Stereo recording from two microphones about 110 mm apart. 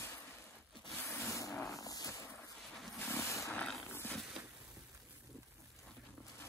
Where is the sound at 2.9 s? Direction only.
20° left (ahead or behind).